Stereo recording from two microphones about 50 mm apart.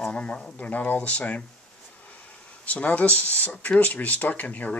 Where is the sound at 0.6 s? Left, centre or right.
Left.